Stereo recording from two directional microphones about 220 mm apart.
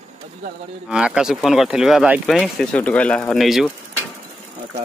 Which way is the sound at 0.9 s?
5° right (ahead or behind).